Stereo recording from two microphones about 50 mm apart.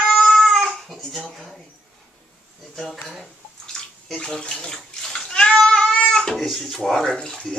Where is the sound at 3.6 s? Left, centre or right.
Centre.